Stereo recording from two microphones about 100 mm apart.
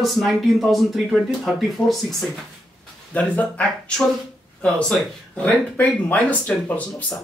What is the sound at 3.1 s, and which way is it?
Speech, 15° left (ahead or behind).